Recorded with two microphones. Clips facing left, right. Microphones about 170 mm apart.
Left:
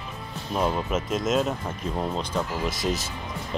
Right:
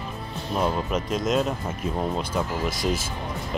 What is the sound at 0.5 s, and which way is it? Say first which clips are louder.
Speech: even; centre (ahead or behind).